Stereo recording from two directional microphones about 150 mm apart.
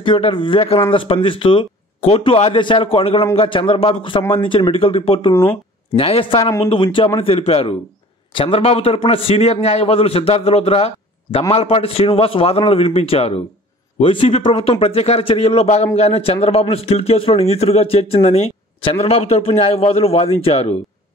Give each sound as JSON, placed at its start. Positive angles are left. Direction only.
{"t": 0.0, "sound": "a man's voice", "side_deg": 35}